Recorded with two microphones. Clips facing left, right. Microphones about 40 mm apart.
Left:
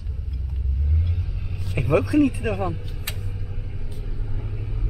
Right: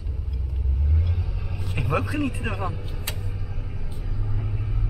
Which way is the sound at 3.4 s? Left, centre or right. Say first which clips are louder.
Even; right.